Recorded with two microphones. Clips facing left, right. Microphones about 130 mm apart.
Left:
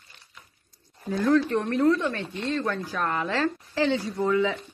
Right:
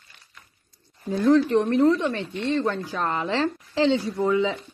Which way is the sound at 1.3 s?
20° right (ahead or behind).